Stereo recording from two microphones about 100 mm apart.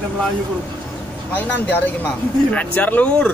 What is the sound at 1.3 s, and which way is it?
Speech, 15° left (ahead or behind).